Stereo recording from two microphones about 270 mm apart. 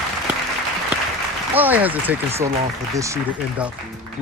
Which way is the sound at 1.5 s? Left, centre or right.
Centre.